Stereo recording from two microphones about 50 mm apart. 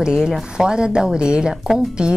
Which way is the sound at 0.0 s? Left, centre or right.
Centre.